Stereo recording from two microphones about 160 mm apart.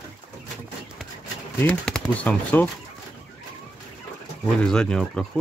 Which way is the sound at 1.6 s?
5° left (ahead or behind).